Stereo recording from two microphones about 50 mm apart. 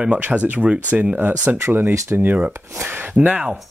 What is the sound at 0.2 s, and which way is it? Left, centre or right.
Speech, right.